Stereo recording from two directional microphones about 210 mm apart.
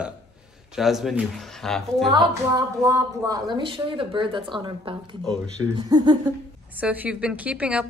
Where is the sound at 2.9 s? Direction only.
15° right (ahead or behind).